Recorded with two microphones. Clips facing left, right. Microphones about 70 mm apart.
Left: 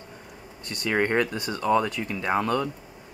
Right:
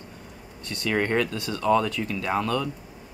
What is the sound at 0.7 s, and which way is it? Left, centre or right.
Speech, left.